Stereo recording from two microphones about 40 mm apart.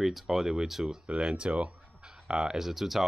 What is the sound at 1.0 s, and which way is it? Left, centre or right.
Speech, right.